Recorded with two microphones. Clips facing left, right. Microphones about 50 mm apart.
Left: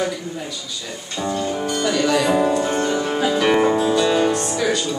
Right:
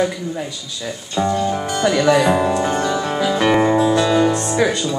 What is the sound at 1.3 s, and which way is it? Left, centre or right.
Speech, centre.